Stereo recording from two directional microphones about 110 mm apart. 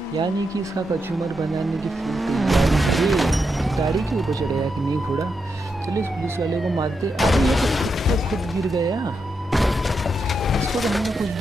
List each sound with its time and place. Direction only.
1.2 s speech: centre (ahead or behind)
7.2 s speech: centre (ahead or behind)
8.7 s speech: 35° right (ahead or behind)
9.5 s music: centre (ahead or behind)
10.4 s pigeon: centre (ahead or behind)